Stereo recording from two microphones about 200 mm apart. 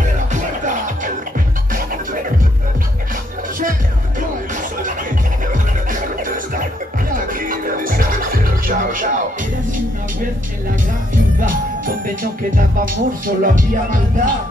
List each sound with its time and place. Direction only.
0.3 s music: 40° right (ahead or behind)
5.5 s music: 40° right (ahead or behind)
11.4 s music: 45° right (ahead or behind)